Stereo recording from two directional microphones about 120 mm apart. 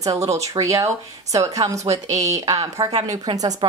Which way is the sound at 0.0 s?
30° right (ahead or behind).